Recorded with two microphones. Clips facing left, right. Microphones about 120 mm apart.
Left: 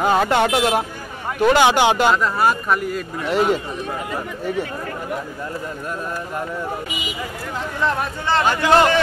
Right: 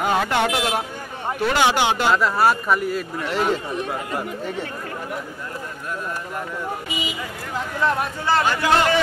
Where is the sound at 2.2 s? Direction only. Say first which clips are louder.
Even; 5° right (ahead or behind).